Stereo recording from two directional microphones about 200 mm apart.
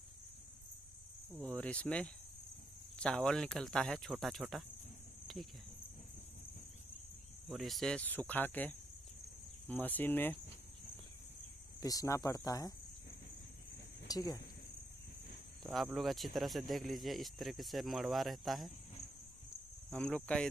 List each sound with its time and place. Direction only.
1.4 s speech: 5° left (ahead or behind)
7.4 s speech: centre (ahead or behind)
11.8 s speech: 15° left (ahead or behind)
14.0 s speech: 20° left (ahead or behind)
15.6 s speech: centre (ahead or behind)
19.9 s speech: 5° left (ahead or behind)